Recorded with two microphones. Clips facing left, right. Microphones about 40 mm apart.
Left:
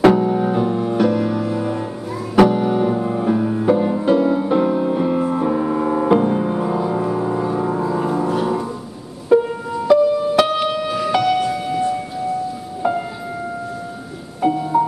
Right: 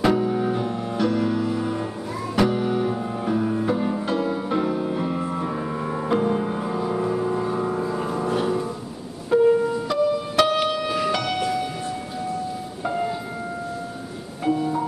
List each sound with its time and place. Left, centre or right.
0.1 s music: centre
14.4 s music: centre